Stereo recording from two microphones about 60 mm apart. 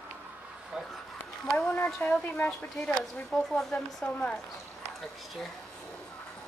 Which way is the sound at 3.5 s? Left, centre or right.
Centre.